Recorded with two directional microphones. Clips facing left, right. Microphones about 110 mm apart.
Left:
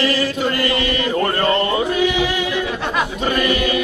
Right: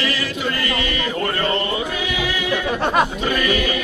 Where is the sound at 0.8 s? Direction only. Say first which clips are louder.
Left 4 dB; 35° left (ahead or behind).